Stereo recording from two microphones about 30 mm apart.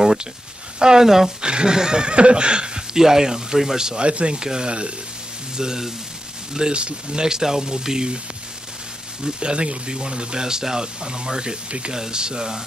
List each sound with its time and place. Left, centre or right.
0.0 s a sound: centre
0.7 s speech: right
1.0 s speech: centre
1.4 s speech: right
3.0 s speech: centre
4.0 s speech: right
4.4 s speech: right
9.4 s speech: right